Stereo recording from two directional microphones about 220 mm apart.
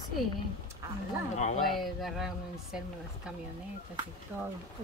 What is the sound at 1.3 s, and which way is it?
Speech, 30° left (ahead or behind).